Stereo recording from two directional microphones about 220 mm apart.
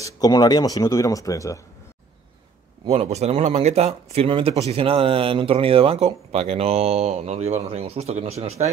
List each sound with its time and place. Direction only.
0.0 s speech: 15° left (ahead or behind)
2.8 s speech: 25° right (ahead or behind)